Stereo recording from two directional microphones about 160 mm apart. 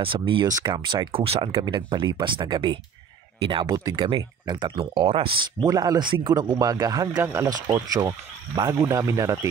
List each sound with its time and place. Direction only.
0.0 s speech: 30° right (ahead or behind)
5.7 s speech: 25° right (ahead or behind)